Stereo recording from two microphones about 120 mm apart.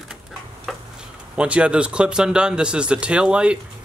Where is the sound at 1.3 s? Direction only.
10° right (ahead or behind).